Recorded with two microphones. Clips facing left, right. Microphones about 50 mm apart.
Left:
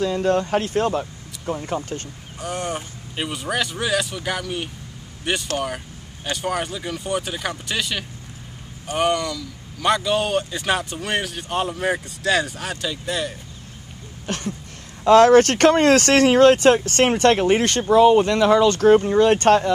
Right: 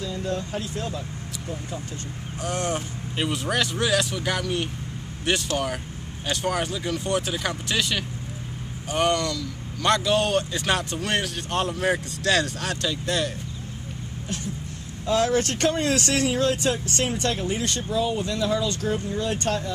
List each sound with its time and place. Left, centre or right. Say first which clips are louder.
0.0 s speech: left 9 dB; left
2.4 s a man's voice: even; centre
14.2 s a sound: left 6 dB; left
15.0 s speech: left 11 dB; left